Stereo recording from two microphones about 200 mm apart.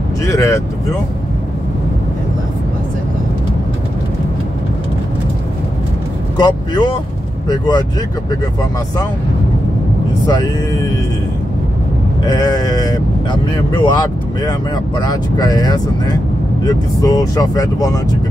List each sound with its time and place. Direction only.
0.2 s speech: 15° left (ahead or behind)
6.3 s speech: 20° left (ahead or behind)
10.2 s speech: 20° left (ahead or behind)
12.3 s speech: 20° left (ahead or behind)